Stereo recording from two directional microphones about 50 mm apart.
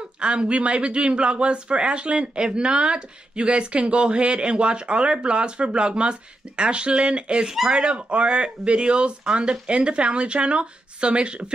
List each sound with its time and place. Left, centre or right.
0.2 s a man's voice: right